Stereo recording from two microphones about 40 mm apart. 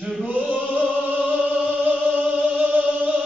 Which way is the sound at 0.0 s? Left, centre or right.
Centre.